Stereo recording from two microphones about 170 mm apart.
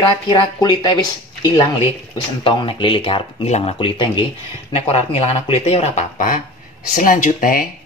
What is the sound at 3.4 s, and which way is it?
Speech, 40° left (ahead or behind).